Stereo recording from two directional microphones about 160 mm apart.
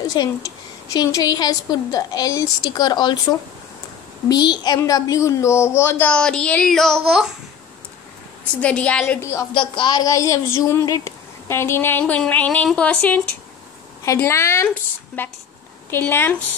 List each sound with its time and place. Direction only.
0.1 s a woman's voice: 25° left (ahead or behind); by 7.2 s centre (ahead or behind)
8.5 s speech: 5° left (ahead or behind)
9.5 s speech: 30° left (ahead or behind); by 16.3 s 15° left (ahead or behind)